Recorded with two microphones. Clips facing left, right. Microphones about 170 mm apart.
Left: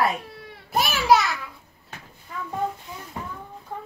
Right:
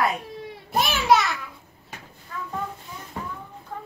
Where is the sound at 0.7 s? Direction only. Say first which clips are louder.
Left 1 dB; centre (ahead or behind).